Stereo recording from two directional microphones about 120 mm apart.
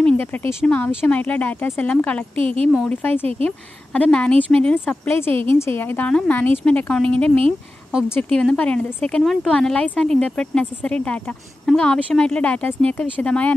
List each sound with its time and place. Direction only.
0.0 s a sound: 15° left (ahead or behind)
0.7 s speech: 15° left (ahead or behind)
2.3 s speech: 50° right (ahead or behind)
2.9 s speech: 15° left (ahead or behind)